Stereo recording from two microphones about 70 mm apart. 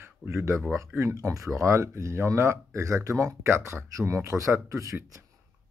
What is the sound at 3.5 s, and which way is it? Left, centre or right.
Speech, right.